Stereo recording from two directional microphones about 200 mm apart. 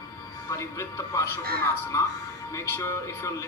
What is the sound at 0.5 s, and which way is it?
Speech, 15° left (ahead or behind).